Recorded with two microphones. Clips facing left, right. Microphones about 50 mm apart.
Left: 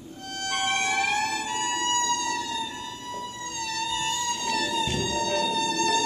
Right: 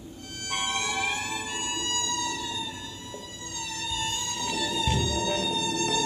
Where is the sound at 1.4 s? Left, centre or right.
Left.